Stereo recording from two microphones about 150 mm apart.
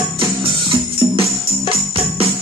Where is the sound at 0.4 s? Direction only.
35° right (ahead or behind).